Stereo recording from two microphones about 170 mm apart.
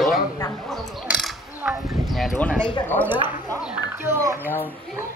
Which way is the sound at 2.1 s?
Centre (ahead or behind).